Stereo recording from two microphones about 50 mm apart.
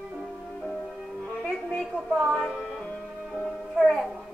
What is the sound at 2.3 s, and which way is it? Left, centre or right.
Music, centre.